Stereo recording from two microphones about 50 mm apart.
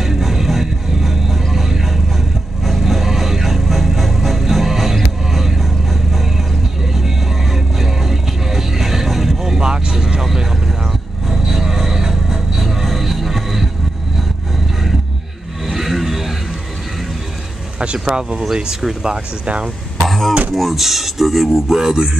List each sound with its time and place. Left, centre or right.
0.0 s music: centre
6.9 s vehicle: centre
15.6 s vehicle: centre
17.7 s speech: centre
19.4 s speech: right
20.1 s a sound: centre
20.5 s speech: centre